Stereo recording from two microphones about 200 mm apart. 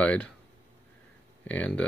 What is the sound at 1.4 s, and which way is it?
Speech, 5° left (ahead or behind).